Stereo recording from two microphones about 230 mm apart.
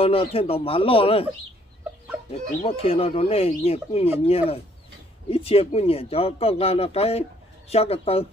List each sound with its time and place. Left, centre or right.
0.0 s speech: left
2.6 s speech: left